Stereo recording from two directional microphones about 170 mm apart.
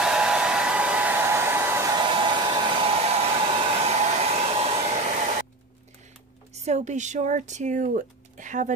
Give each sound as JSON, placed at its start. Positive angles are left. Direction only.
{"t": 0.0, "sound": "hair dryer", "side_deg": -5}
{"t": 6.5, "sound": "speech", "side_deg": -40}